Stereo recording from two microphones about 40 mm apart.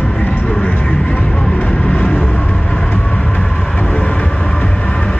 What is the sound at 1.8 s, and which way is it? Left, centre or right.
Music, left.